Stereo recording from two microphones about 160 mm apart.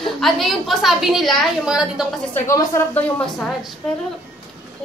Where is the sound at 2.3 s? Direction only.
20° left (ahead or behind).